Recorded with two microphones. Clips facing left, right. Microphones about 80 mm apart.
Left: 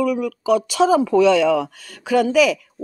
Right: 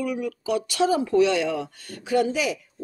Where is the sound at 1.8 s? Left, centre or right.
Left.